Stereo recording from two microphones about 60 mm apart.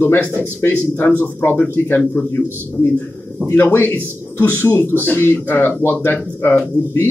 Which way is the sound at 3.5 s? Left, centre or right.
Left.